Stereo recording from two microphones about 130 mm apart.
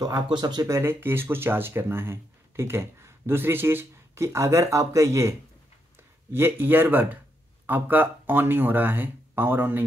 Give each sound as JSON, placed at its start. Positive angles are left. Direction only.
{"t": 0.0, "sound": "speech", "side_deg": -30}
{"t": 6.3, "sound": "speech", "side_deg": -15}